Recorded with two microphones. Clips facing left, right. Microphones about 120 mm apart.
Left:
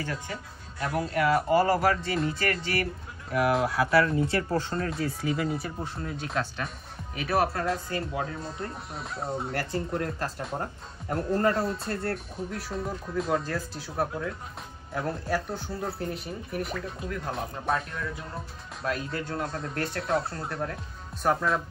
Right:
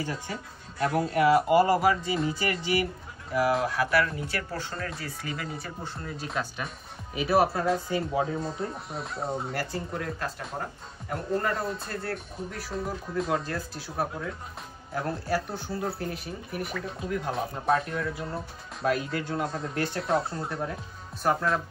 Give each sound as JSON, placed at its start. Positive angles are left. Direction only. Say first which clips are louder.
{"t": 0.1, "sound": "speech", "louder": "even", "side_deg": 0}
{"t": 4.3, "sound": "speech", "louder": "left 6 dB", "side_deg": 25}
{"t": 5.3, "sound": "speech", "louder": "left 6 dB", "side_deg": 0}